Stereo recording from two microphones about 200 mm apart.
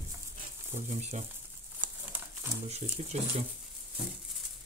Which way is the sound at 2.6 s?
35° right (ahead or behind).